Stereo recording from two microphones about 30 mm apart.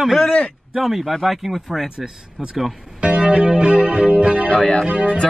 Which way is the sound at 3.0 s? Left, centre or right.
Right.